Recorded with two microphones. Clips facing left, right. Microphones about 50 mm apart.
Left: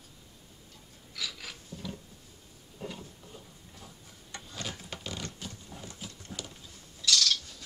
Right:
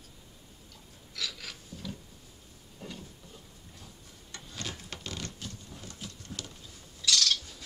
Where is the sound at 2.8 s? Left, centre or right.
Centre.